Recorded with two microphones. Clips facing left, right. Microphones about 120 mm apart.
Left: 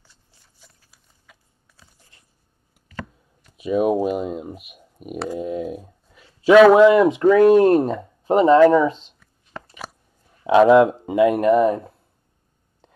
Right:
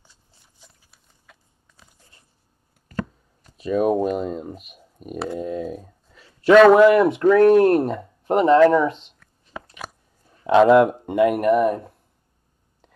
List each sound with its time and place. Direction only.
1.2 s a sound: 5° left (ahead or behind)
2.9 s chopping: 40° right (ahead or behind)
3.5 s speech: 10° left (ahead or behind)
9.5 s biting: centre (ahead or behind)
10.4 s speech: 5° left (ahead or behind)